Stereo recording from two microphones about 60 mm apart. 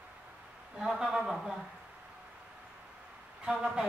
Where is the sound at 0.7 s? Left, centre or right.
Centre.